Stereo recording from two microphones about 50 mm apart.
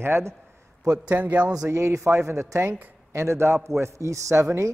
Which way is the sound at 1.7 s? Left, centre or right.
Right.